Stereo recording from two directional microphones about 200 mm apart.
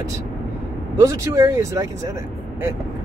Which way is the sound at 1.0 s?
15° right (ahead or behind).